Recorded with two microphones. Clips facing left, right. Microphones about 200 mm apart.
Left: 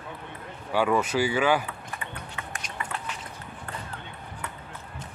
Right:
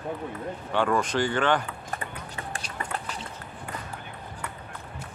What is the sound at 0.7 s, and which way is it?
Speech, 5° left (ahead or behind).